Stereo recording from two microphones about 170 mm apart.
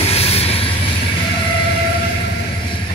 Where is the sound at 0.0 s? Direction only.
35° left (ahead or behind).